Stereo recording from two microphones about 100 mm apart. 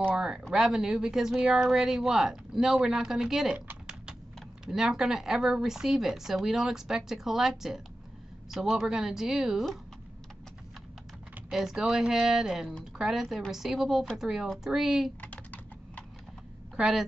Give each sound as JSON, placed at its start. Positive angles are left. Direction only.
{"t": 0.1, "sound": "speech", "side_deg": -5}
{"t": 11.5, "sound": "speech", "side_deg": -5}
{"t": 15.1, "sound": "typing", "side_deg": 15}
{"t": 16.7, "sound": "a woman's voice", "side_deg": -5}